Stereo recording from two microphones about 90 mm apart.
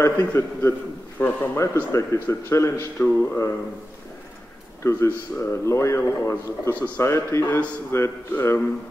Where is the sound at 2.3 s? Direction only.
30° left (ahead or behind).